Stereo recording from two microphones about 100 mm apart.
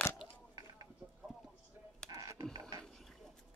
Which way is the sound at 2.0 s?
35° right (ahead or behind).